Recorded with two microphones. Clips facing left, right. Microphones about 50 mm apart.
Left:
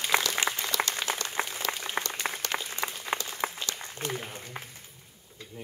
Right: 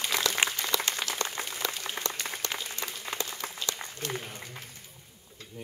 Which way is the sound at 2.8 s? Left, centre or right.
Left.